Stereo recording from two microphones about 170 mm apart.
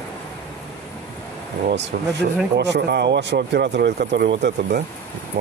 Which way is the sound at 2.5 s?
80° right.